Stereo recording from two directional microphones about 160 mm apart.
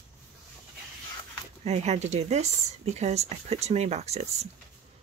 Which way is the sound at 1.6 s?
45° right (ahead or behind).